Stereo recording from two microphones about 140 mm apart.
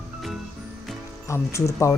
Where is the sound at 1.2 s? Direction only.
20° left (ahead or behind).